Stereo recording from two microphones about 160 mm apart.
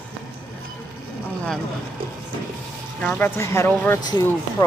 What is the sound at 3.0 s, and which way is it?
Speech, 10° left (ahead or behind).